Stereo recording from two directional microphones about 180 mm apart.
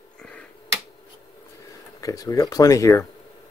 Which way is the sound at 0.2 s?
5° left (ahead or behind).